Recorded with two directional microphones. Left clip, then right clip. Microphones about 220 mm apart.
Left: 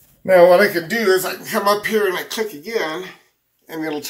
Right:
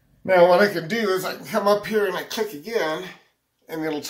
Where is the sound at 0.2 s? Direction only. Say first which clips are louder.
Left 5 dB; 5° left (ahead or behind).